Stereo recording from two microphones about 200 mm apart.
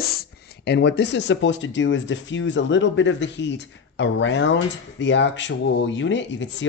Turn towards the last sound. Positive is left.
turn(degrees=65)  # may be behind; listen again after turning